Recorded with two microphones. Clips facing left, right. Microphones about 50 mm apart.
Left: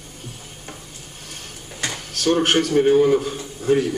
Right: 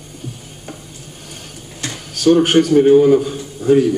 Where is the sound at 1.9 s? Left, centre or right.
Centre.